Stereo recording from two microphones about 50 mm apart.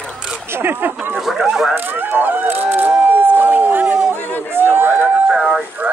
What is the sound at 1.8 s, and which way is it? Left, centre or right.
Speech, right.